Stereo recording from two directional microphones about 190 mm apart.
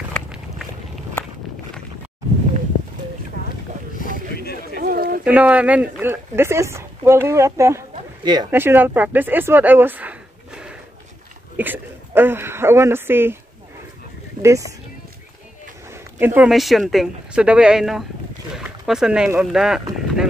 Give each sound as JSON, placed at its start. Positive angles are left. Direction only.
{"t": 4.7, "sound": "a sound", "side_deg": -50}
{"t": 5.2, "sound": "speech", "side_deg": -5}
{"t": 8.5, "sound": "speech", "side_deg": -10}
{"t": 14.4, "sound": "speech", "side_deg": -15}
{"t": 15.9, "sound": "speech", "side_deg": -10}